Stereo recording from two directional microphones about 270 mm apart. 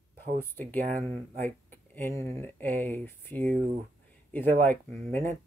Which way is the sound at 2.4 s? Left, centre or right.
Centre.